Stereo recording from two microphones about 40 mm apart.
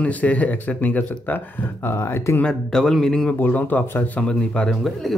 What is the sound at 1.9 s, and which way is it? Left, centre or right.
Speech, left.